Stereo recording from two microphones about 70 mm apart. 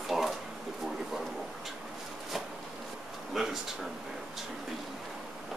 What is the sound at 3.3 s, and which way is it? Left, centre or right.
Speech, centre.